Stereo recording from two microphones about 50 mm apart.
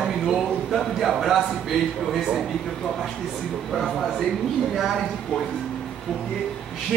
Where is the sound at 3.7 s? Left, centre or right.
Centre.